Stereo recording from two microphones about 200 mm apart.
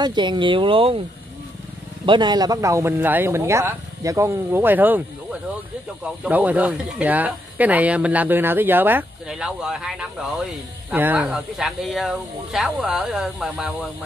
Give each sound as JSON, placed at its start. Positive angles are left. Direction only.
{"t": 0.0, "sound": "speech", "side_deg": -20}
{"t": 2.0, "sound": "speech", "side_deg": -20}